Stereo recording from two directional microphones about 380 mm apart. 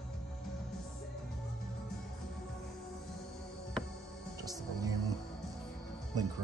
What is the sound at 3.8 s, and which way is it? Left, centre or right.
Music, centre.